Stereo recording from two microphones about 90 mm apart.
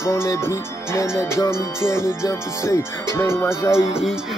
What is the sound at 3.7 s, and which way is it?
Speech, 5° right (ahead or behind).